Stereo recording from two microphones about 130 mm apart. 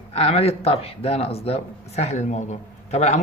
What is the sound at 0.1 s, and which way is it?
Speech, 50° left (ahead or behind).